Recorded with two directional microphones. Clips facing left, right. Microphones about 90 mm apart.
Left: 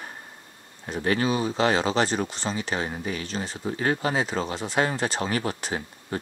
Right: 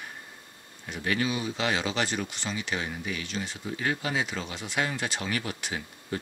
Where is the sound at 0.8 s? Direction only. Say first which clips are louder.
Left 5 dB; 35° left (ahead or behind).